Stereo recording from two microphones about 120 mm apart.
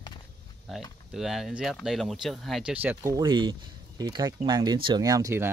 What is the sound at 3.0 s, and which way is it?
Speech, 30° right (ahead or behind).